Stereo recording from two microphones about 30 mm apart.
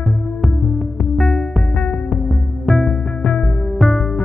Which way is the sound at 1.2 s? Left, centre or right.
Centre.